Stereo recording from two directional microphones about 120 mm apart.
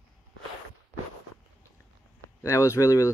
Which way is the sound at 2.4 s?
20° left (ahead or behind).